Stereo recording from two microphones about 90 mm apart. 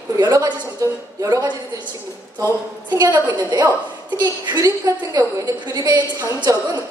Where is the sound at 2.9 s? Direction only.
50° right (ahead or behind).